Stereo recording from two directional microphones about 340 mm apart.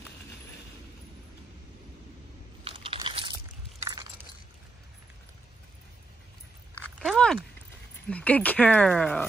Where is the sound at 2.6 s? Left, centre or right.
Centre.